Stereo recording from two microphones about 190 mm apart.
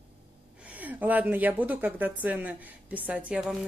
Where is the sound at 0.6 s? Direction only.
10° right (ahead or behind).